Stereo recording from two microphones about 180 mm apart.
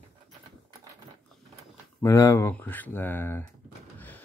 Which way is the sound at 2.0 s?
20° left (ahead or behind).